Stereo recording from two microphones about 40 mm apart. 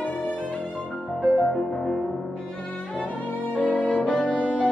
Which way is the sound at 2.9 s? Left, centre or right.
Left.